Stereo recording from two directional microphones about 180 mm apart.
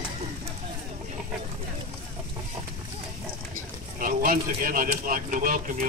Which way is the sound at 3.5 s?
50° right (ahead or behind).